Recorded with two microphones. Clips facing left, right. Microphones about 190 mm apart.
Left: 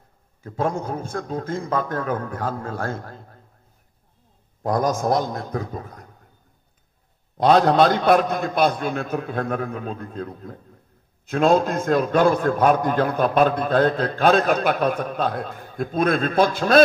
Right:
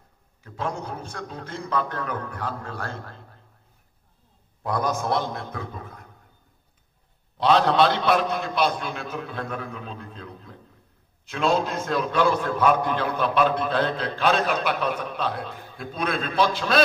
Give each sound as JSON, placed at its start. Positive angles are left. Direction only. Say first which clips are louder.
{"t": 0.4, "sound": "a man's voice", "louder": "left 6 dB", "side_deg": 45}
{"t": 4.6, "sound": "a man's voice", "louder": "left 5 dB", "side_deg": 45}
{"t": 7.3, "sound": "a man's voice", "louder": "left 4 dB", "side_deg": 45}